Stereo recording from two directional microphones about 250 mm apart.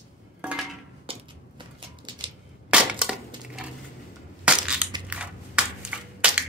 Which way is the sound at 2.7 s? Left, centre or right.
Centre.